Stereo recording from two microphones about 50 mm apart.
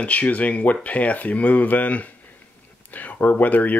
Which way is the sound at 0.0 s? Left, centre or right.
Left.